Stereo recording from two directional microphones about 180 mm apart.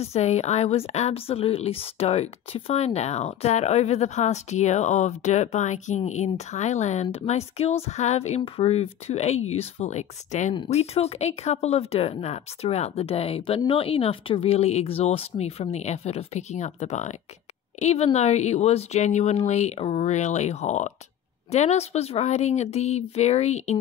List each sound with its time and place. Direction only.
0.0 s speech: 35° left (ahead or behind)